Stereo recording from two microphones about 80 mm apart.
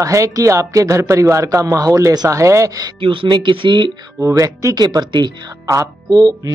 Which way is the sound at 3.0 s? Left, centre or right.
Right.